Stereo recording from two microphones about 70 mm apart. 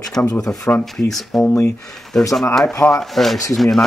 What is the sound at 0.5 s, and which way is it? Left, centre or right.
Speech, centre.